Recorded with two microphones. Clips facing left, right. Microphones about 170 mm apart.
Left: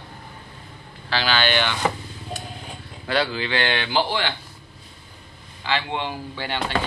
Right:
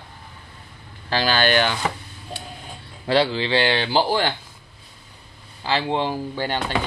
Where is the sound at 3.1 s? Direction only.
30° right (ahead or behind).